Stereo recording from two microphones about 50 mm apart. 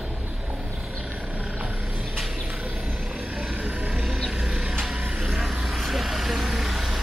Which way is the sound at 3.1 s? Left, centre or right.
Right.